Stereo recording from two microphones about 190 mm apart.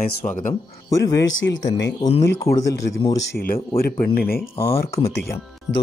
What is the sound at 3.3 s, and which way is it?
Speech, 50° left (ahead or behind).